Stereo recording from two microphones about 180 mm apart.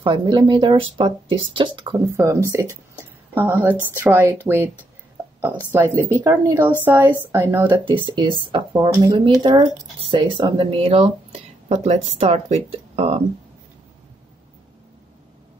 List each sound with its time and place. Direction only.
0.0 s speech: 25° right (ahead or behind)
7.8 s speech: 25° right (ahead or behind)